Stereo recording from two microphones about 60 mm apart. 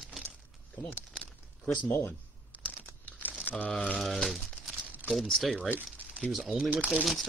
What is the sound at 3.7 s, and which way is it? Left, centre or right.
Speech, centre.